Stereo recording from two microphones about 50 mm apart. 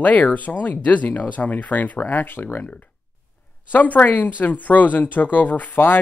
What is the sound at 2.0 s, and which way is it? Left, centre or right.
Speech, left.